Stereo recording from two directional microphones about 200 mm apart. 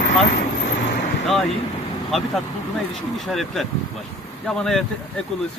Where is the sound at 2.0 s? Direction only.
Centre (ahead or behind).